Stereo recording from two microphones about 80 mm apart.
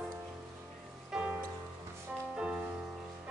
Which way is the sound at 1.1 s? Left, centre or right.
Right.